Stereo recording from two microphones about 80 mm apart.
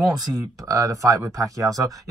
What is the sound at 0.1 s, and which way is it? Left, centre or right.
Speech, right.